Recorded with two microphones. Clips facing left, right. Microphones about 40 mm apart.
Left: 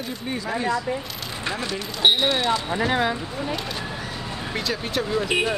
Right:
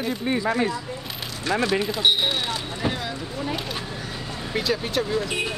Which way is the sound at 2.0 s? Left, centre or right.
Left.